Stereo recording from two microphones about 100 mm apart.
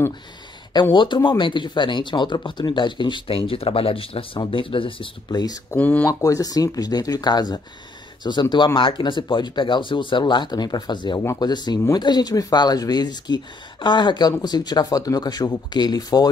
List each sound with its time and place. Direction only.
0.9 s speech: 55° left (ahead or behind)
5.3 s speech: 40° left (ahead or behind)
5.8 s speech: 15° left (ahead or behind)
6.0 s speech: 35° left (ahead or behind)
11.1 s speech: 40° left (ahead or behind)